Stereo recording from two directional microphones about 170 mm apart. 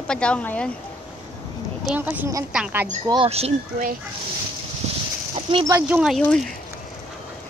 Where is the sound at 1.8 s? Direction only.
10° right (ahead or behind).